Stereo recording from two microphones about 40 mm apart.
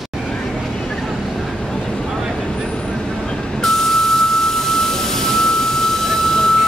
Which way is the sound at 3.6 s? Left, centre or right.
Centre.